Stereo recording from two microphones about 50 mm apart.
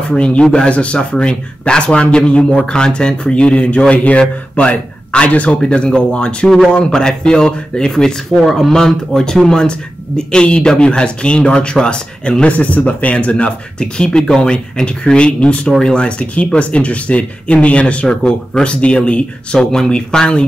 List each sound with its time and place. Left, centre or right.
0.1 s speech: left
12.4 s speech: left